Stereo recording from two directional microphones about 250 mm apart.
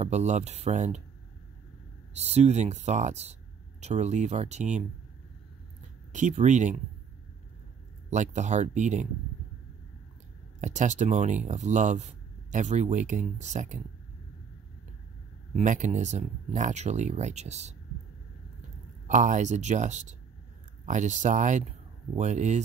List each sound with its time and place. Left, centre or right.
0.0 s speech: right
2.1 s speech: right
6.1 s speech: right
8.1 s speech: right
10.6 s speech: right
15.5 s speech: right
19.0 s speech: right